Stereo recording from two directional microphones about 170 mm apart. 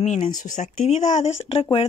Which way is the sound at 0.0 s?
45° left (ahead or behind).